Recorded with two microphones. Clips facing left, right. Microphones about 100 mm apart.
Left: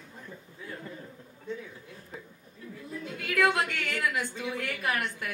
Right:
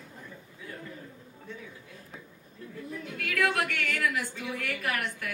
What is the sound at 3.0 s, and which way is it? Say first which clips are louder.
A woman's voice: left 3 dB; 20° left (ahead or behind).